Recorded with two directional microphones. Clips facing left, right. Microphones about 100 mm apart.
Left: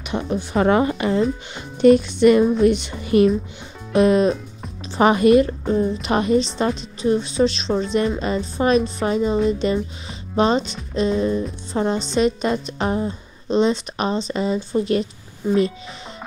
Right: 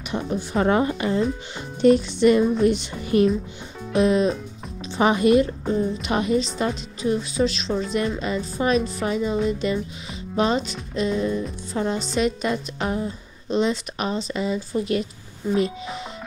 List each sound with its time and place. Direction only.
0.1 s a woman's voice: 80° left
1.8 s speech: 60° left (ahead or behind)
3.9 s speech: 55° left (ahead or behind)
6.0 s a woman's voice: 40° left (ahead or behind)